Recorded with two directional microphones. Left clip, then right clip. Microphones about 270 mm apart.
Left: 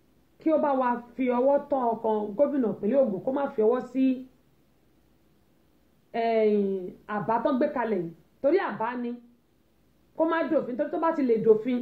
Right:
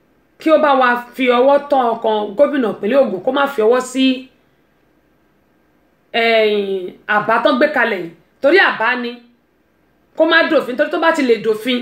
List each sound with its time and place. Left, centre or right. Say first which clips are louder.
0.4 s speech: right 13 dB; centre
6.1 s speech: right 11 dB; centre
10.1 s speech: right 13 dB; centre